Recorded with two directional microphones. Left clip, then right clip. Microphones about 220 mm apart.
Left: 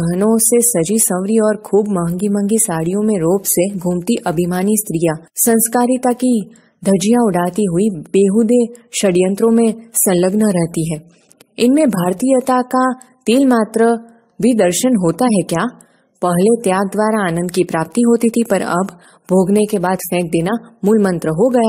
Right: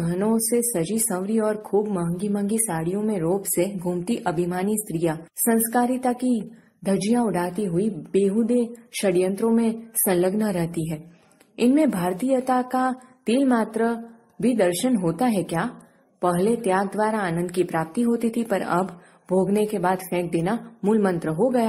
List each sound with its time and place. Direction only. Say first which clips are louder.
0.1 s a woman's voice: left 9 dB; 40° left (ahead or behind)